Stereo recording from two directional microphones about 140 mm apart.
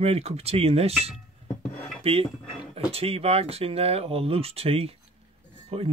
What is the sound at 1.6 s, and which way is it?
Dishes, 5° left (ahead or behind).